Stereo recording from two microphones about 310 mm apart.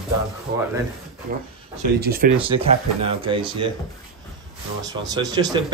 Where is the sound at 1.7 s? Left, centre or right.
Right.